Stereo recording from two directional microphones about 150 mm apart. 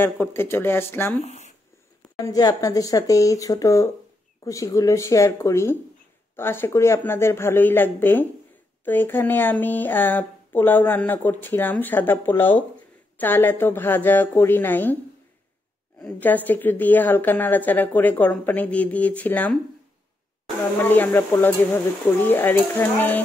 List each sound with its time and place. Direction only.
0.0 s speech: 15° left (ahead or behind)
1.2 s a sound: 50° left (ahead or behind)
2.2 s speech: 25° left (ahead or behind)
16.0 s speech: 10° left (ahead or behind)
20.9 s speech: 15° left (ahead or behind)